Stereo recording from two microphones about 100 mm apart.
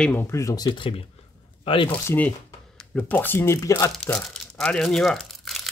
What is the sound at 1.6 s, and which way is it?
Speech, 60° left (ahead or behind).